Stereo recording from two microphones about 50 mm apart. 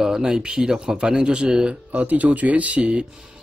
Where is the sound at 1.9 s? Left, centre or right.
Right.